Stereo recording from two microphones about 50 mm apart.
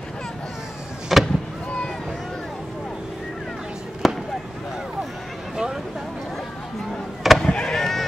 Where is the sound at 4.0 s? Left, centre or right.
Centre.